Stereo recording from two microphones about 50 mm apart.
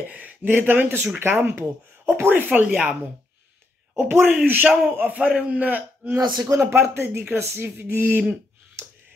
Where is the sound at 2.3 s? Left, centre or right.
Right.